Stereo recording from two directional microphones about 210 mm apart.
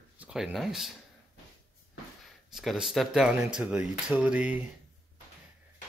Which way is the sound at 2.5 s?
Centre (ahead or behind).